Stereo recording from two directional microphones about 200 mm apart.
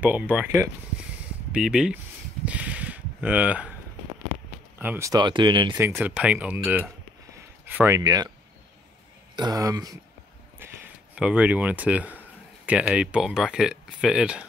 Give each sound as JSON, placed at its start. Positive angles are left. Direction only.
{"t": 0.0, "sound": "speech", "side_deg": -5}
{"t": 2.4, "sound": "a sound", "side_deg": -5}
{"t": 4.7, "sound": "speech", "side_deg": -10}
{"t": 5.9, "sound": "speech", "side_deg": -5}
{"t": 9.4, "sound": "speech", "side_deg": -20}
{"t": 10.6, "sound": "a sound", "side_deg": -10}
{"t": 11.1, "sound": "speech", "side_deg": -5}